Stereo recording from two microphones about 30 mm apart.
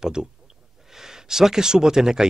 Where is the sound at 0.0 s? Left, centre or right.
Right.